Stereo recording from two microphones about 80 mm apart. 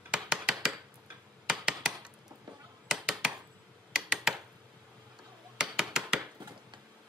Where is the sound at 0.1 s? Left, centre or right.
Centre.